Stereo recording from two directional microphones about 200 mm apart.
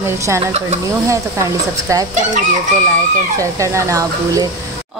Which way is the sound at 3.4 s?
15° right (ahead or behind).